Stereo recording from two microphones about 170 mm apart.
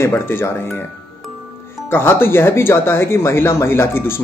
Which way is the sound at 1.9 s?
15° left (ahead or behind).